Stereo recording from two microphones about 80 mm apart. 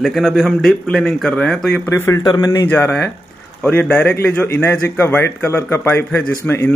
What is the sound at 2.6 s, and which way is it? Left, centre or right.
Speech, left.